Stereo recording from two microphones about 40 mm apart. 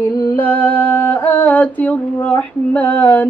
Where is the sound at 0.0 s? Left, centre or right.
Left.